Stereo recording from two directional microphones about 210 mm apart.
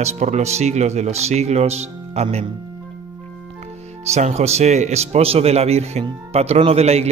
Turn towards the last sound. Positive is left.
turn(degrees=-30)  # may be behind; listen again after turning